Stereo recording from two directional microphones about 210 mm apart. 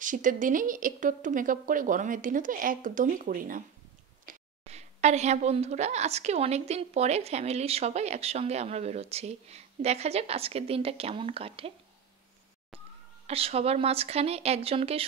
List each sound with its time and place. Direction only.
0.0 s a woman's voice: 40° right (ahead or behind)
13.3 s speech: 30° right (ahead or behind)